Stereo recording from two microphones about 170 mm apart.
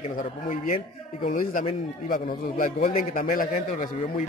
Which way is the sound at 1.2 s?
55° left (ahead or behind).